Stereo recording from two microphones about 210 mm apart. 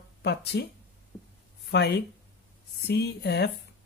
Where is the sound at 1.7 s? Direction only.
50° left (ahead or behind).